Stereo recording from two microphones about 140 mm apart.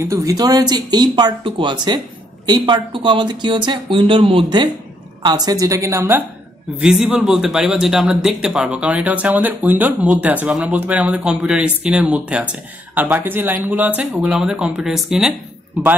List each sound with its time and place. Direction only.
0.0 s speech: 25° right (ahead or behind)
6.8 s a man's voice: 5° right (ahead or behind)